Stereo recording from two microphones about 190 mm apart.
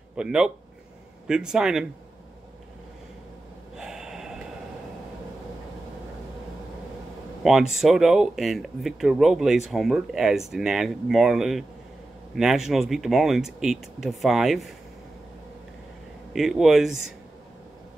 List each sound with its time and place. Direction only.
0.1 s speech: 5° right (ahead or behind)
3.7 s gasp: 5° right (ahead or behind)
7.4 s speech: centre (ahead or behind)
16.3 s speech: centre (ahead or behind)